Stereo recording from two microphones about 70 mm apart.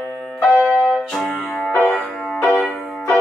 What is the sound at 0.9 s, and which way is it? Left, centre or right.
Music, centre.